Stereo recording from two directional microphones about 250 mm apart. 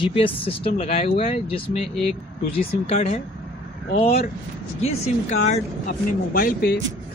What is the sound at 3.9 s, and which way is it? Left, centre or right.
Speech, left.